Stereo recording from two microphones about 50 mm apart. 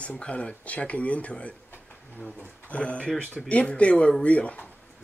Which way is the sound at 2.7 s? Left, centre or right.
Left.